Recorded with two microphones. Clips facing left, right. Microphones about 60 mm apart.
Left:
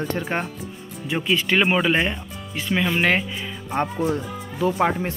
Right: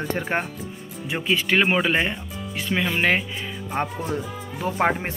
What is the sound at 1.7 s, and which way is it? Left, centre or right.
Speech, centre.